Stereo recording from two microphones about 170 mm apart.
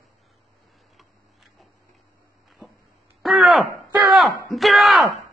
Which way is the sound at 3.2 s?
Centre (ahead or behind).